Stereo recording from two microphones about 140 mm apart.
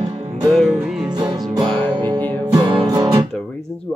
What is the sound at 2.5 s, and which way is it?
Music, 30° right (ahead or behind).